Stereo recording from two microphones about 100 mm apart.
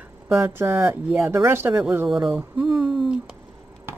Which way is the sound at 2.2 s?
5° right (ahead or behind).